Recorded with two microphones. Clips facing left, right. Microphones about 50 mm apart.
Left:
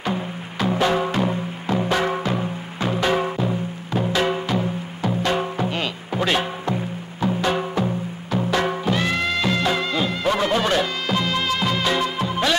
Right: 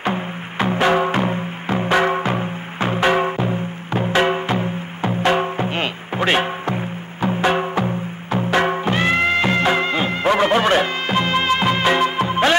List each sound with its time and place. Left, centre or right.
0.0 s music: right